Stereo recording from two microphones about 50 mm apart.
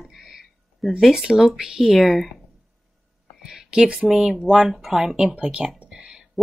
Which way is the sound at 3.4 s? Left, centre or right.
Centre.